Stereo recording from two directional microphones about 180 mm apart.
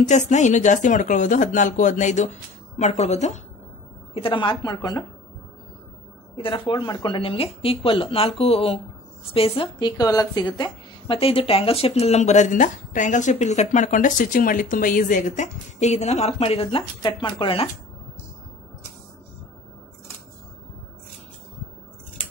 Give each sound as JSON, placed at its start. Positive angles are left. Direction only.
{"t": 0.0, "sound": "a woman's voice", "side_deg": 40}
{"t": 6.3, "sound": "speech", "side_deg": 30}